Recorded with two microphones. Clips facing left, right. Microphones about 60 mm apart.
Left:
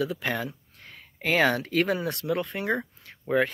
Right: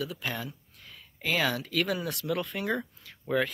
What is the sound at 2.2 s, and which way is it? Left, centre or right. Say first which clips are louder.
Speech: left 3 dB; left.